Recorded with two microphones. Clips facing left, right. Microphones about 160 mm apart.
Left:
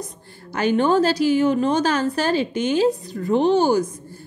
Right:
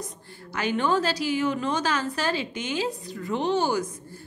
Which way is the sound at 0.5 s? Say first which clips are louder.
Left 6 dB; 45° left (ahead or behind).